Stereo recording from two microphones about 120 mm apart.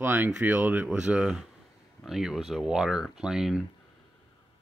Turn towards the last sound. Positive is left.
turn(degrees=-5)  # may be behind; listen again after turning